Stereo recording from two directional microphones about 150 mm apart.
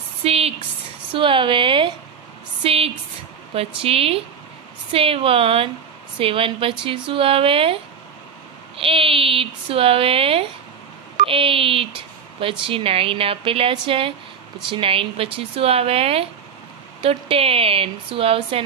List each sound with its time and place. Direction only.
0.2 s speech: 40° right (ahead or behind)
2.6 s a sound: 40° right (ahead or behind)
3.5 s speech: 40° right (ahead or behind)
8.7 s speech: 40° right (ahead or behind)